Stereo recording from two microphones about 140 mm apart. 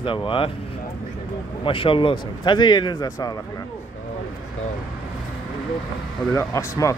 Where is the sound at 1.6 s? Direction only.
40° left (ahead or behind).